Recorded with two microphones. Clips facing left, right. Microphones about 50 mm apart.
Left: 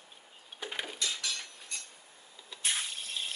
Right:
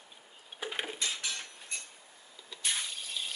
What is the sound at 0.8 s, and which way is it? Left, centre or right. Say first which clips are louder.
Dishes: even; right.